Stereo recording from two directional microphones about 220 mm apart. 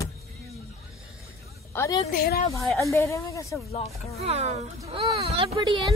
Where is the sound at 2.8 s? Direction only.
15° left (ahead or behind).